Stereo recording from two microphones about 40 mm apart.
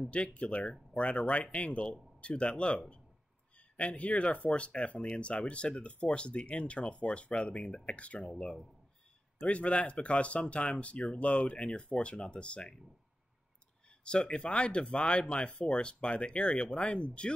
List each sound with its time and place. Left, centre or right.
0.1 s speech: left
9.5 s speech: left
13.8 s speech: left